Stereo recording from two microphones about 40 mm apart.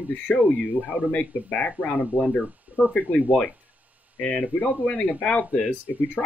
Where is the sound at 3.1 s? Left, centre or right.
Left.